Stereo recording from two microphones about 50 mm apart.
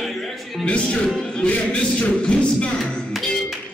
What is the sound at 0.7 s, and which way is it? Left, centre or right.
Speech, left.